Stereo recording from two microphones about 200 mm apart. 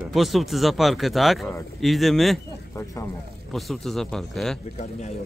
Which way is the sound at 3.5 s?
Centre (ahead or behind).